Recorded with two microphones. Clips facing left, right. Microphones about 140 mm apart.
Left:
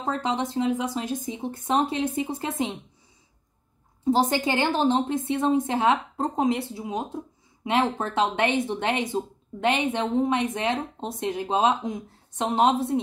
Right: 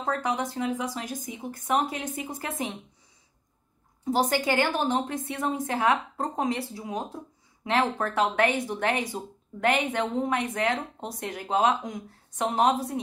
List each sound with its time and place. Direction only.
0.0 s speech: 25° left (ahead or behind)
4.0 s speech: 25° left (ahead or behind)